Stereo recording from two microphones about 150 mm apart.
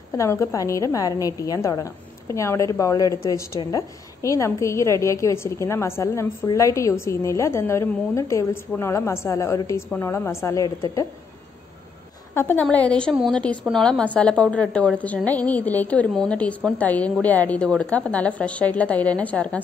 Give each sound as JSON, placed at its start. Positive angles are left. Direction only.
{"t": 0.1, "sound": "a woman's voice", "side_deg": 20}
{"t": 12.4, "sound": "a woman's voice", "side_deg": 15}